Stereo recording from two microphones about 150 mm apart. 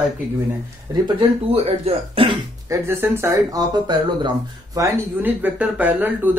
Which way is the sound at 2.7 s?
15° right (ahead or behind).